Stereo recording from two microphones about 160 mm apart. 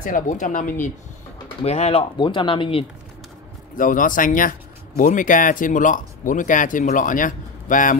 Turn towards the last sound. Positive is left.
turn(degrees=55)  # may be behind; listen again after turning